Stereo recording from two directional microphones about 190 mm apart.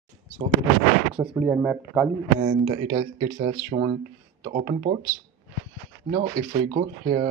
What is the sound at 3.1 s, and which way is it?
Speech, 35° right (ahead or behind).